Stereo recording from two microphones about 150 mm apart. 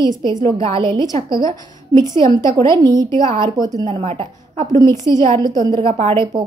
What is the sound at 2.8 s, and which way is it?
Speech, 25° right (ahead or behind).